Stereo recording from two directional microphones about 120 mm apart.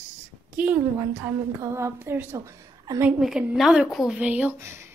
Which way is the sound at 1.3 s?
25° right (ahead or behind).